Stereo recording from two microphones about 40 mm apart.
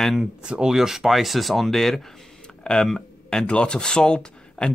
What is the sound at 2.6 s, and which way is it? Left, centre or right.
Speech, centre.